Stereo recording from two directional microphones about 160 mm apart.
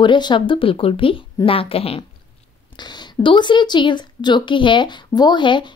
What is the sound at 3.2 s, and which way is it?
Speech, 30° left (ahead or behind).